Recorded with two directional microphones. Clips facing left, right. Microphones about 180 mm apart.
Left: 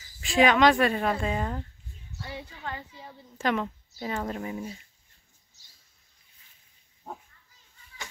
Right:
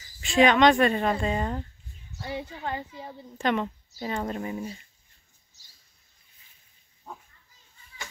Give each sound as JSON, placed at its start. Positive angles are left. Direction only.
{"t": 0.2, "sound": "speech", "side_deg": 0}
{"t": 2.1, "sound": "a woman's voice", "side_deg": -25}
{"t": 3.3, "sound": "speech", "side_deg": 0}